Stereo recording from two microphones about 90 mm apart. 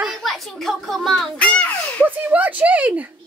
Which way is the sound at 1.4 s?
15° left (ahead or behind).